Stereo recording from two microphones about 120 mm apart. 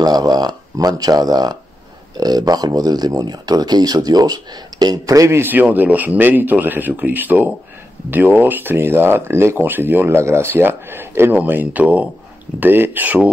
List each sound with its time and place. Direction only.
0.0 s speech: 35° right (ahead or behind); by 13.3 s 15° right (ahead or behind)